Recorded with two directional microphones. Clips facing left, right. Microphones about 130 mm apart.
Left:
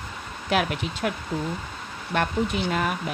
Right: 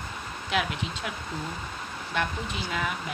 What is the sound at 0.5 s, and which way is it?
Speech, 55° left (ahead or behind).